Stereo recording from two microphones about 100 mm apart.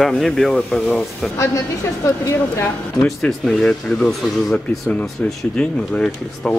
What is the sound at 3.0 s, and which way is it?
Speech, 5° left (ahead or behind).